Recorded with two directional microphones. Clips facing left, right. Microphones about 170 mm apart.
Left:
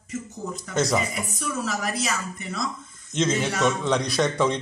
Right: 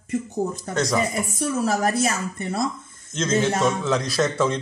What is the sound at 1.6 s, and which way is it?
Speech, 50° right (ahead or behind).